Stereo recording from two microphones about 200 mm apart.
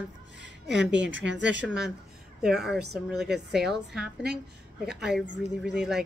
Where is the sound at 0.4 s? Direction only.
60° right (ahead or behind).